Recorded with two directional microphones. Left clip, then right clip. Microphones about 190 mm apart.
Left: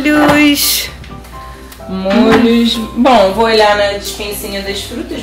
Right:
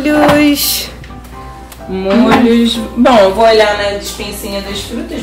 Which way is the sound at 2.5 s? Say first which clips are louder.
Right 1 dB; 45° left (ahead or behind).